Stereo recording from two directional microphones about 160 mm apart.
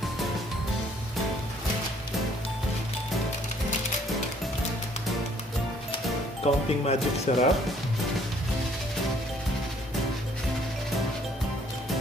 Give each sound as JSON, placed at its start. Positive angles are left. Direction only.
{"t": 6.4, "sound": "speech", "side_deg": 45}